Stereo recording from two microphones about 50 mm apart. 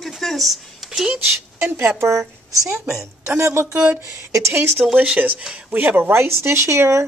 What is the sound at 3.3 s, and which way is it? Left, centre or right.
Speech, right.